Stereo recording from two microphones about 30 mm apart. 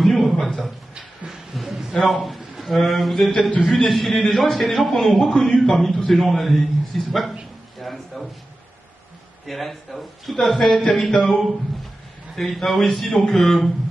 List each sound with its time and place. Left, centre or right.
0.0 s a sound: centre
1.5 s a sound: centre
2.0 s a man's voice: centre
5.9 s speech: centre
6.1 s a man's voice: centre
9.5 s a man's voice: centre